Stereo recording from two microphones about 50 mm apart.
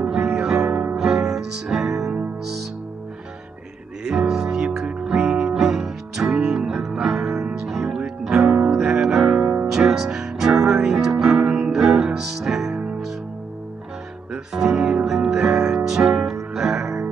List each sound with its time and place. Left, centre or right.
0.0 s music: centre
4.0 s music: centre
11.4 s music: right
11.7 s music: centre
14.3 s music: centre